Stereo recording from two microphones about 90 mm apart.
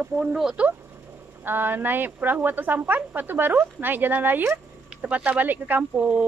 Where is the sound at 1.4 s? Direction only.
20° right (ahead or behind).